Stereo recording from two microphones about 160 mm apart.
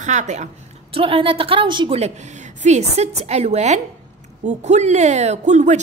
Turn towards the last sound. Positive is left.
turn(degrees=-45)  # may be behind; listen again after turning